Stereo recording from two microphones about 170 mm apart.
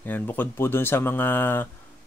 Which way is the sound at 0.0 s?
10° left (ahead or behind).